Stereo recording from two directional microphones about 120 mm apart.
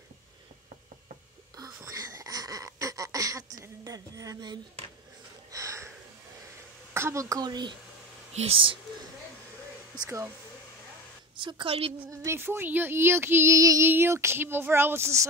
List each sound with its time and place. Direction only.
1.6 s a sound: 30° right (ahead or behind)
3.6 s female singing: 30° right (ahead or behind)
5.5 s a sound: 25° right (ahead or behind)
6.9 s female singing: 20° right (ahead or behind); by 7.7 s 35° right (ahead or behind)
8.3 s speech: 60° right (ahead or behind)
10.0 s female singing: 20° right (ahead or behind)
11.3 s a woman's voice: 40° right (ahead or behind)
12.1 s female singing: 25° right (ahead or behind)